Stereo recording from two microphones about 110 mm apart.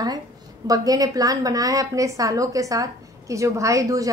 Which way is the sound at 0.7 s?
35° right (ahead or behind).